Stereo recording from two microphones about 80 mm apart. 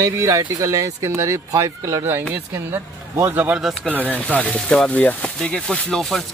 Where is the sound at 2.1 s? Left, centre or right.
Right.